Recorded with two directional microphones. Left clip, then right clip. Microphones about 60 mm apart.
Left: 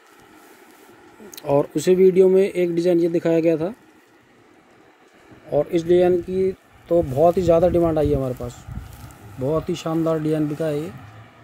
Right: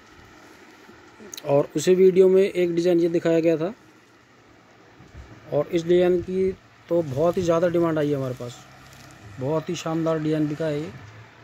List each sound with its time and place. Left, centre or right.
1.3 s speech: left
5.5 s speech: left
9.5 s speech: centre